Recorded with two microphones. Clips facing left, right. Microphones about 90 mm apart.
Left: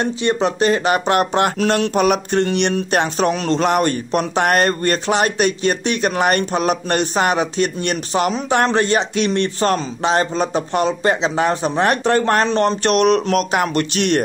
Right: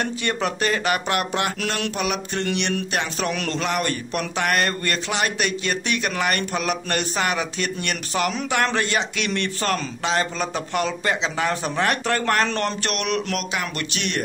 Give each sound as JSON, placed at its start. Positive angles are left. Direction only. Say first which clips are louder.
{"t": 0.0, "sound": "speech", "louder": "left 6 dB", "side_deg": 30}
{"t": 2.0, "sound": "mantra", "louder": "left 10 dB", "side_deg": 45}
{"t": 2.4, "sound": "speech", "louder": "left 6 dB", "side_deg": 40}